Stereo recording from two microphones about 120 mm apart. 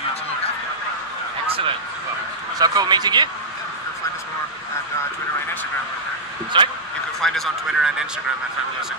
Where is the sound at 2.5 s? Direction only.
30° right (ahead or behind).